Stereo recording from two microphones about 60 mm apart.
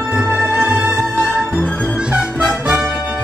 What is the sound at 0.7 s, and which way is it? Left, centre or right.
Music, right.